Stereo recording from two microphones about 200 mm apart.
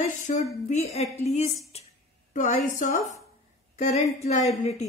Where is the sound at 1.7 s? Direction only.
30° left (ahead or behind).